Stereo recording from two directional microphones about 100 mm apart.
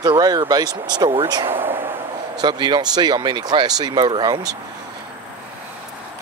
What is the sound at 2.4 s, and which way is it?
Speech, 45° right (ahead or behind).